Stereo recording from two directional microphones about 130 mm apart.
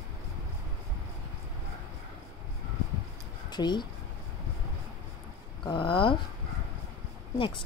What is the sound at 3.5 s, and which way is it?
Speech, 35° left (ahead or behind).